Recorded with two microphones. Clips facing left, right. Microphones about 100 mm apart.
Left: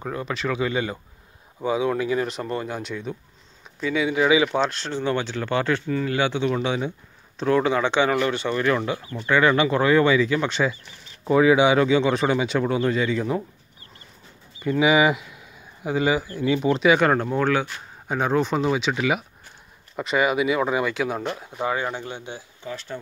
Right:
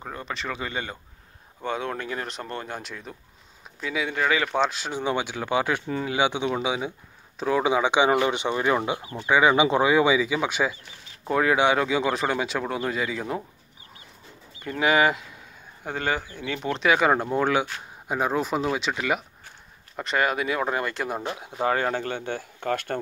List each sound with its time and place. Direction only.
0.0 s speech: centre (ahead or behind)
14.6 s speech: 5° left (ahead or behind)
21.2 s speech: 15° right (ahead or behind)
21.6 s speech: 50° right (ahead or behind)